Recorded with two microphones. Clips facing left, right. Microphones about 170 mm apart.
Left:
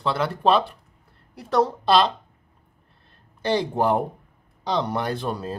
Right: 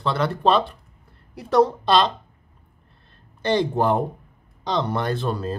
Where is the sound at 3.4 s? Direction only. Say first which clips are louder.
Right 2 dB; 10° left (ahead or behind).